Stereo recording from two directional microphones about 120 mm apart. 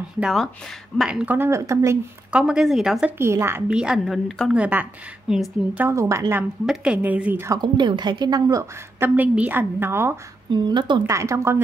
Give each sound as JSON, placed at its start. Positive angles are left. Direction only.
{"t": 0.2, "sound": "a woman's voice", "side_deg": 0}
{"t": 2.3, "sound": "a woman's voice", "side_deg": -5}
{"t": 3.2, "sound": "a woman's voice", "side_deg": -20}
{"t": 3.7, "sound": "a woman's voice", "side_deg": -5}
{"t": 4.6, "sound": "a woman's voice", "side_deg": -15}
{"t": 5.8, "sound": "a woman's voice", "side_deg": -20}
{"t": 6.6, "sound": "a woman's voice", "side_deg": -5}
{"t": 7.4, "sound": "a woman's voice", "side_deg": -35}
{"t": 9.0, "sound": "a woman's voice", "side_deg": -15}
{"t": 10.5, "sound": "a woman's voice", "side_deg": -40}
{"t": 11.1, "sound": "a woman's voice", "side_deg": -25}